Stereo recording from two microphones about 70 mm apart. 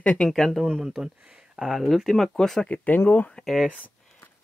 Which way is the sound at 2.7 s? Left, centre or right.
Left.